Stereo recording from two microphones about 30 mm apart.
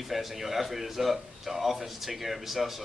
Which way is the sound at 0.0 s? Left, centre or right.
Centre.